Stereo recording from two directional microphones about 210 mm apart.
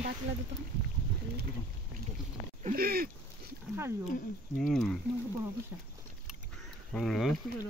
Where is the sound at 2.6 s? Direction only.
45° right (ahead or behind).